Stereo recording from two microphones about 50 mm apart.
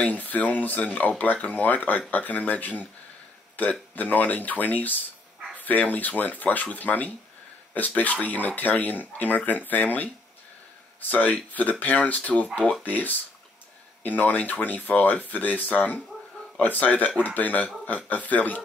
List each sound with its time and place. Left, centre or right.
0.0 s speech: left
3.9 s speech: left